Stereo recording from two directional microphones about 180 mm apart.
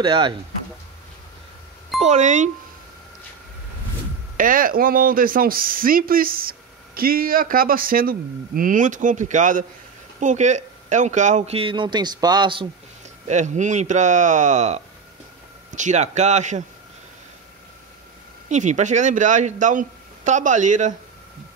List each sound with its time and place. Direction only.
0.0 s speech: 25° right (ahead or behind)
2.0 s a man's voice: 40° right (ahead or behind)
4.4 s a man's voice: 50° right (ahead or behind); by 12.6 s 25° right (ahead or behind)
13.3 s a man's voice: 40° right (ahead or behind)
18.5 s speech: 40° right (ahead or behind)